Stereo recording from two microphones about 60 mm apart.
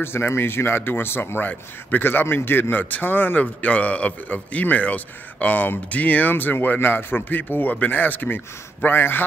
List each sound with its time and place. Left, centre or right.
0.0 s speech: left